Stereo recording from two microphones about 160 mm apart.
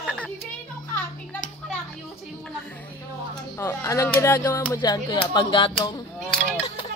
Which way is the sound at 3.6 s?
15° left (ahead or behind).